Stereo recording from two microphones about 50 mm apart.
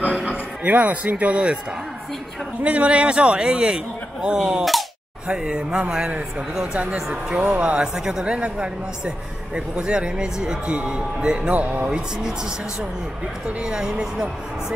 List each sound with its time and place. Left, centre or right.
0.0 s music: right
0.7 s a man's voice: right
2.6 s a man's voice: right
7.8 s a woman's voice: centre
11.5 s speech: right
11.9 s a woman's voice: centre
13.5 s a woman's voice: right